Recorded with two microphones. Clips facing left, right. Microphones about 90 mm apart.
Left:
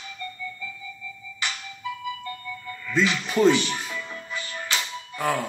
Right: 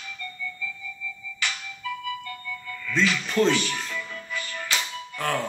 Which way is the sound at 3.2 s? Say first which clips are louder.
Left 4 dB; 10° left (ahead or behind).